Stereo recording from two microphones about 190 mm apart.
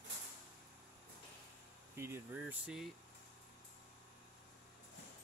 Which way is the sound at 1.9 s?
15° right (ahead or behind).